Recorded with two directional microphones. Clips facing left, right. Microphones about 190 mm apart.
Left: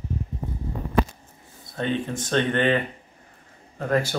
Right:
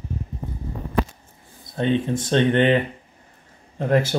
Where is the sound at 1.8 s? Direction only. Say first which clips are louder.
Right 5 dB; 20° right (ahead or behind).